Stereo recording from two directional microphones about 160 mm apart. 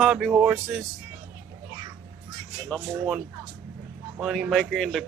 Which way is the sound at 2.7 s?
Centre (ahead or behind).